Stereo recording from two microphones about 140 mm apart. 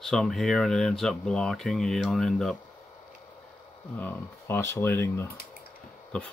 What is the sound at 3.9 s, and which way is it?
Speech, 15° left (ahead or behind).